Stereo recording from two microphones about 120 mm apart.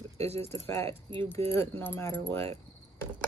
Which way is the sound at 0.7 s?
20° left (ahead or behind).